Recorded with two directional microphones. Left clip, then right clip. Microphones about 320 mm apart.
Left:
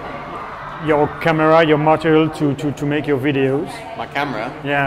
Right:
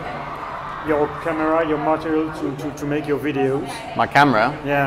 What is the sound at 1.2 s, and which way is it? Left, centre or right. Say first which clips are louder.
Speech: left 7 dB; left.